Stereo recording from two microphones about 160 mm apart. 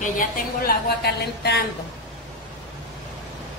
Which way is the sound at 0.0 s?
65° left (ahead or behind).